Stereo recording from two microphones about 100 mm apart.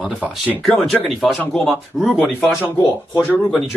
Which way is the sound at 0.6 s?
5° left (ahead or behind).